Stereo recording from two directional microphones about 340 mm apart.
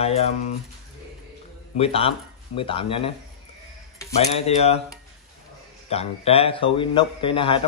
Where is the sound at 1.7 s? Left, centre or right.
Centre.